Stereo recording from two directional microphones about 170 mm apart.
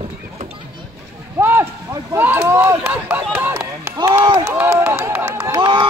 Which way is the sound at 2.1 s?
15° right (ahead or behind).